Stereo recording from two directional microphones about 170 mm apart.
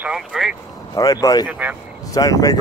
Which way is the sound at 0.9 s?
20° left (ahead or behind).